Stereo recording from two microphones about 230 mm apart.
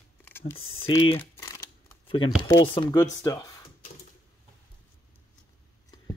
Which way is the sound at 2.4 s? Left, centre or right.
Centre.